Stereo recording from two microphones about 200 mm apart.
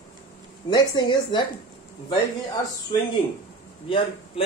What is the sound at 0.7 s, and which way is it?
Speech, 20° left (ahead or behind).